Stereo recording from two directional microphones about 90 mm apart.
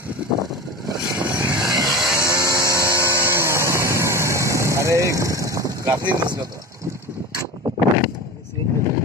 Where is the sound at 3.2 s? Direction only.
30° right (ahead or behind).